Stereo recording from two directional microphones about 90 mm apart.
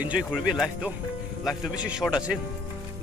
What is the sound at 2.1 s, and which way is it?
Speech, 10° right (ahead or behind).